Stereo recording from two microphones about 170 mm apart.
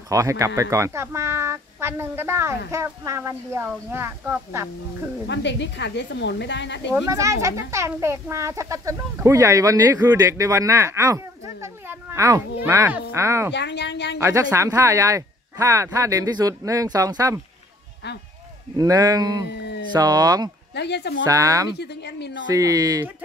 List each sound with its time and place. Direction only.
0.1 s a child's voice: 20° right (ahead or behind)
5.3 s a woman's voice: 90° left
6.9 s a child's voice: 20° right (ahead or behind)
13.5 s a woman's voice: 90° left
14.2 s speech: 15° right (ahead or behind)
18.8 s speech: 20° right (ahead or behind)
20.7 s speech: 85° left
21.3 s speech: 20° right (ahead or behind)
21.7 s speech: 80° left
22.5 s speech: 20° right (ahead or behind)